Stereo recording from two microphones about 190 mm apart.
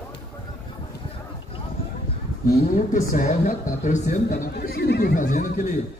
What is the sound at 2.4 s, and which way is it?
Speech, 45° left (ahead or behind).